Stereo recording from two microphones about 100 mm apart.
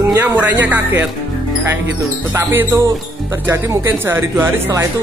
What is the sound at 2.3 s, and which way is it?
Speech, 20° right (ahead or behind).